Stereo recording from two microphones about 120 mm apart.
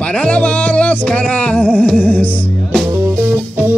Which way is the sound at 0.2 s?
10° left (ahead or behind).